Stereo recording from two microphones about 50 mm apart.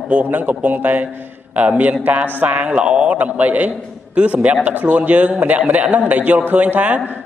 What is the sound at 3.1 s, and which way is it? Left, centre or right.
A man's voice, right.